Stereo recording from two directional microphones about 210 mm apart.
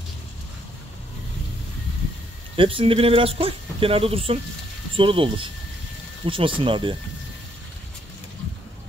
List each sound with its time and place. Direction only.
2.5 s speech: 25° right (ahead or behind)